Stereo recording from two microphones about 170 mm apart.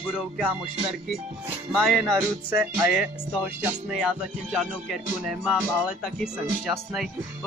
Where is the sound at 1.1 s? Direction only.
5° right (ahead or behind).